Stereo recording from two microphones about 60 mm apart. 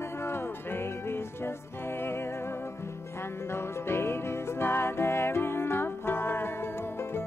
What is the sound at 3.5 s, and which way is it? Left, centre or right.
Music, left.